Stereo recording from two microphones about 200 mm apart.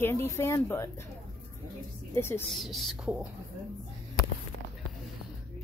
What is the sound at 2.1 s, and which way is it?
Speech, 10° left (ahead or behind).